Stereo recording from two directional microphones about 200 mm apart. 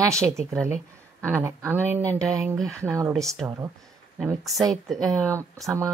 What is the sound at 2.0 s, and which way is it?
Speech, 5° left (ahead or behind).